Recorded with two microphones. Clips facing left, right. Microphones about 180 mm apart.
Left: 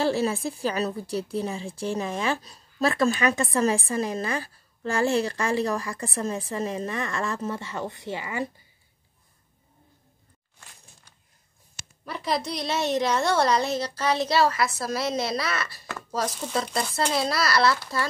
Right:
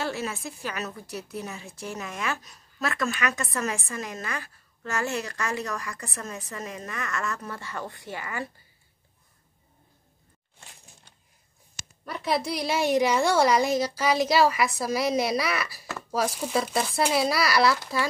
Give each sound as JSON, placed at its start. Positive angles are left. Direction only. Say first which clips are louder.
{"t": 0.0, "sound": "a woman's voice", "louder": "left 7 dB", "side_deg": 30}
{"t": 12.0, "sound": "a woman's voice", "louder": "right 1 dB", "side_deg": 0}